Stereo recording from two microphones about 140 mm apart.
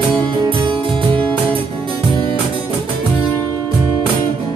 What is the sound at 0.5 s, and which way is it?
Music, 35° right (ahead or behind).